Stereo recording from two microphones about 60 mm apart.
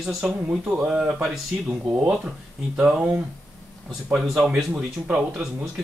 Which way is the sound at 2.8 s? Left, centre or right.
Centre.